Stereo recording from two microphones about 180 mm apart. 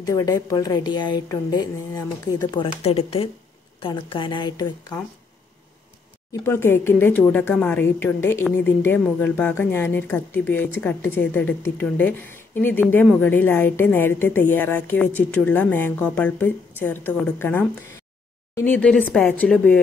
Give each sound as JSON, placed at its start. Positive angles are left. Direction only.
{"t": 0.0, "sound": "a woman's voice", "side_deg": 20}
{"t": 6.4, "sound": "a woman's voice", "side_deg": 10}